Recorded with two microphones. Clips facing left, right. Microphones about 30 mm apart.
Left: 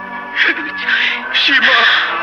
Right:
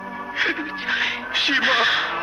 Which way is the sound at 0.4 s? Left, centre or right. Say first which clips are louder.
Left 9 dB; left.